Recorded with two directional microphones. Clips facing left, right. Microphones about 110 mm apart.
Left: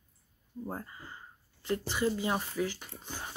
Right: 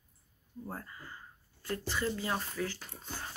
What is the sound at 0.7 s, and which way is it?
Speech, 20° left (ahead or behind).